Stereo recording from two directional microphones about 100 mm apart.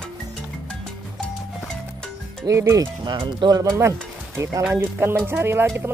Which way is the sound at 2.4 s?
35° right (ahead or behind).